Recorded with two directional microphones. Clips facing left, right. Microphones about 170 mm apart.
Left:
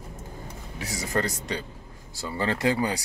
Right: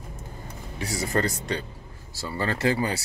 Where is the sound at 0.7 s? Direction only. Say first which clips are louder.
Right 2 dB; 10° left (ahead or behind).